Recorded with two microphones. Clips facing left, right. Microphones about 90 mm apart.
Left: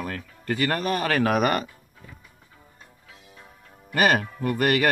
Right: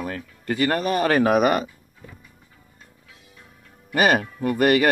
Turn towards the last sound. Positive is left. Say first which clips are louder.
# right 4 dB
turn(degrees=-20)  # may be behind; listen again after turning